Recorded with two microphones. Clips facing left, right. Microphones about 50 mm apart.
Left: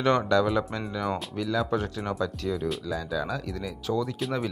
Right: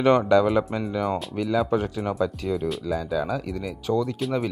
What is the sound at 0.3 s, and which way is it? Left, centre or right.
Speech, centre.